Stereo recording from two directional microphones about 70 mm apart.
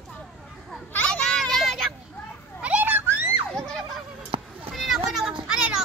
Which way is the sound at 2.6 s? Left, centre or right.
Right.